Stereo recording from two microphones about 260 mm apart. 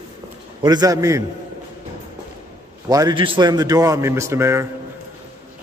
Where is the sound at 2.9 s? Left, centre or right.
Centre.